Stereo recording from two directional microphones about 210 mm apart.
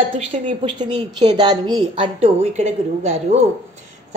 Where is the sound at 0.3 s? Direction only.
25° right (ahead or behind).